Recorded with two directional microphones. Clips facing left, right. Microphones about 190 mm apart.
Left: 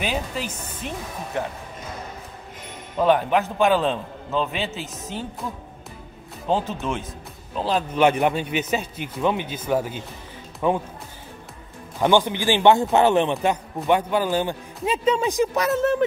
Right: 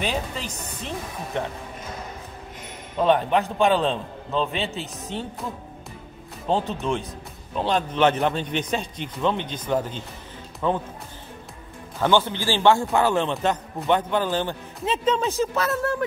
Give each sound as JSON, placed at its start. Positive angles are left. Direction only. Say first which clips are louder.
{"t": 0.0, "sound": "a man's voice", "louder": "left 1 dB", "side_deg": 5}
{"t": 3.0, "sound": "a man's voice", "louder": "left 1 dB", "side_deg": 5}
{"t": 6.5, "sound": "a man's voice", "louder": "even", "side_deg": 0}
{"t": 12.0, "sound": "a man's voice", "louder": "left 2 dB", "side_deg": 15}